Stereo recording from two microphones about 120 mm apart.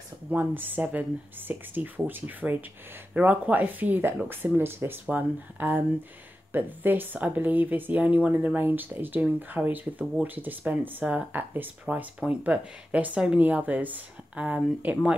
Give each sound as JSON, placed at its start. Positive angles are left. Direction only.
{"t": 0.3, "sound": "speech", "side_deg": -15}